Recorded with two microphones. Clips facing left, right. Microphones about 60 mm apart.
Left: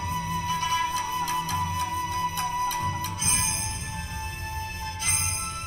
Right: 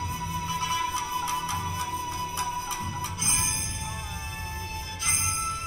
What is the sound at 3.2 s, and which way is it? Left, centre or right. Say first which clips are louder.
Music: even; left.